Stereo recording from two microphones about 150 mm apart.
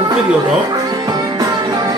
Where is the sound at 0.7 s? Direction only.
25° right (ahead or behind).